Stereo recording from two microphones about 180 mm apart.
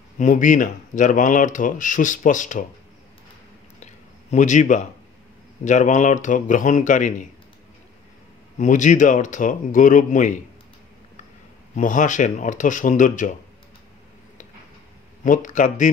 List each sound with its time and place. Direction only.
0.2 s speech: 45° left (ahead or behind)
3.8 s a sound: 40° left (ahead or behind)
5.6 s speech: 45° left (ahead or behind)
8.5 s speech: 45° left (ahead or behind)
11.7 s speech: 45° left (ahead or behind)
15.2 s speech: 45° left (ahead or behind)